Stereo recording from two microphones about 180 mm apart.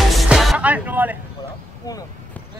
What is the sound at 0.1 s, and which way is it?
Music, centre (ahead or behind).